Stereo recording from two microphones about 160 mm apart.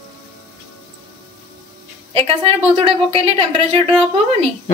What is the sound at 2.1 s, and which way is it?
A woman's voice, 35° right (ahead or behind).